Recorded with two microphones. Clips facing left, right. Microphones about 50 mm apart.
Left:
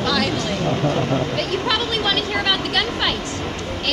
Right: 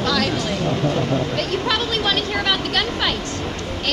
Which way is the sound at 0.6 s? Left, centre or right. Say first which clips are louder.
Left 1 dB; left.